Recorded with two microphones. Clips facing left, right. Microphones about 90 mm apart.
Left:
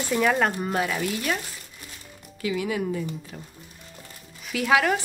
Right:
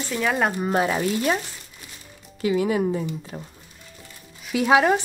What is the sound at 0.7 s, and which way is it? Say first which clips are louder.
Speech: right 4 dB; 30° right (ahead or behind).